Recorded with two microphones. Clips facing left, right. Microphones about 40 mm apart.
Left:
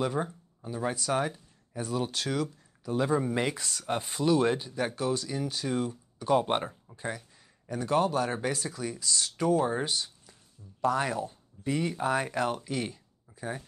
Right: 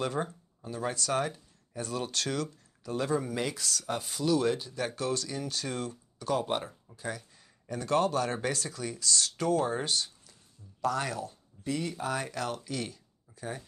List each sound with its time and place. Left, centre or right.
0.0 s speech: centre; by 6.7 s left
7.0 s speech: centre